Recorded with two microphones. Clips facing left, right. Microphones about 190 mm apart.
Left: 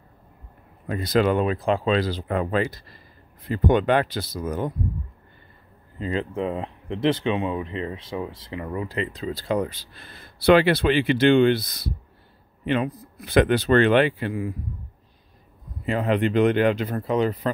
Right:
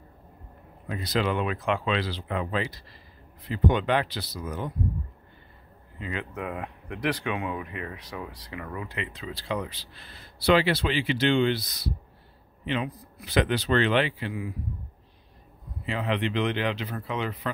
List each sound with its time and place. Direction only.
0.8 s speech: 50° left (ahead or behind)
5.9 s speech: 35° left (ahead or behind)
8.8 s speech: 35° left (ahead or behind)
15.8 s speech: 45° left (ahead or behind)